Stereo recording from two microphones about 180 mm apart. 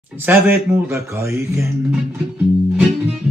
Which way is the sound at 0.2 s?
10° right (ahead or behind).